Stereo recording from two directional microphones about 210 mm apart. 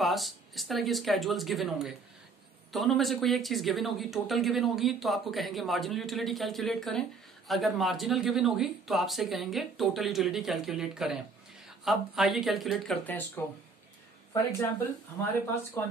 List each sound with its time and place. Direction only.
0.0 s speech: centre (ahead or behind)
15.8 s speech: 10° left (ahead or behind)